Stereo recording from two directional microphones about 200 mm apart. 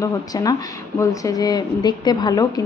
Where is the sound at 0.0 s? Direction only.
20° left (ahead or behind).